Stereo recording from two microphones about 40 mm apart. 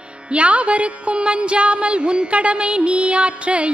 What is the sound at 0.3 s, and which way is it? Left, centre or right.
Music, right.